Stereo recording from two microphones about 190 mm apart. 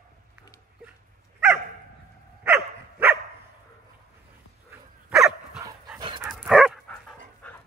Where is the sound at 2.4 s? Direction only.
10° right (ahead or behind).